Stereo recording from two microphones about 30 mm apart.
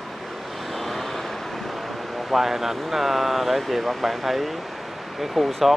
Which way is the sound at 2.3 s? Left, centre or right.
Centre.